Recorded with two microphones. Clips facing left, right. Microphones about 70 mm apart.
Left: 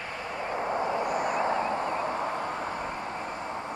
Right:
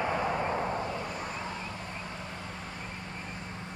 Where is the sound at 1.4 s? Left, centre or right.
Left.